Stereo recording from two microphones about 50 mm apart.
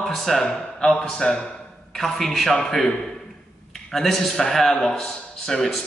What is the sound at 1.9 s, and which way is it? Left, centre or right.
A man's voice, centre.